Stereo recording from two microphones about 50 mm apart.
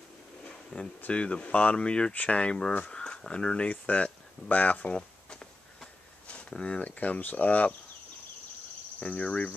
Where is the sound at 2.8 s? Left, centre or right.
Centre.